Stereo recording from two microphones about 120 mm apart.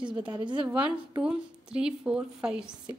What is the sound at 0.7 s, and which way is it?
A woman's voice, 10° right (ahead or behind).